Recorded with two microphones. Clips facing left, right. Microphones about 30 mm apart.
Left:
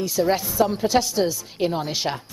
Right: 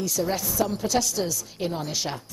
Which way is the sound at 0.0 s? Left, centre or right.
Left.